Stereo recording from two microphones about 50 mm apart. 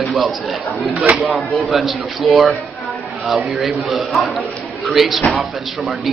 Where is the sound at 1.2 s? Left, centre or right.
Centre.